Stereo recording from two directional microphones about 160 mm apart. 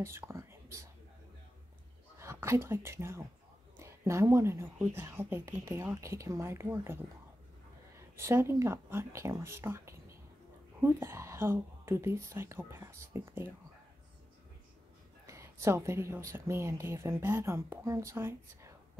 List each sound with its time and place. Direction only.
0.0 s speech: 15° right (ahead or behind)
2.1 s a woman's voice: 15° right (ahead or behind)
8.2 s a woman's voice: 15° right (ahead or behind)
15.2 s a woman's voice: 20° right (ahead or behind)